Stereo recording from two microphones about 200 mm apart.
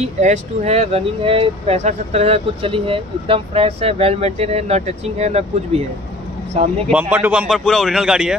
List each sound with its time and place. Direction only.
0.2 s speech: 35° right (ahead or behind)
6.9 s a man's voice: 5° right (ahead or behind)